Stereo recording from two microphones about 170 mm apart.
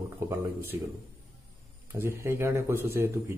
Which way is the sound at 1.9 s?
15° right (ahead or behind).